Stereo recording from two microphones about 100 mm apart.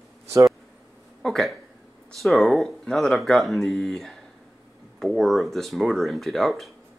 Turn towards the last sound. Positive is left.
turn(degrees=0)  # may be behind; listen again after turning